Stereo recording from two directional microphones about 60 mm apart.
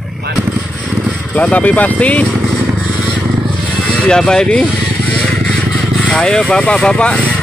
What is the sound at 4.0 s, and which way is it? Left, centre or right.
Speech, centre.